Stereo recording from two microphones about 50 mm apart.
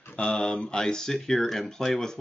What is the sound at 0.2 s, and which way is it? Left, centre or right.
Speech, centre.